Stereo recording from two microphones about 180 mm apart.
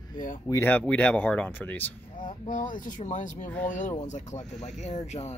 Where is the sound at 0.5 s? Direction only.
10° left (ahead or behind).